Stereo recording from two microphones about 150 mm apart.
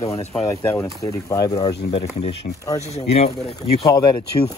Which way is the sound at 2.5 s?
50° left (ahead or behind).